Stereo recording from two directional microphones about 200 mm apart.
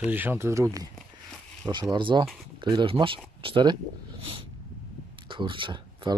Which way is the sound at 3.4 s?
25° right (ahead or behind).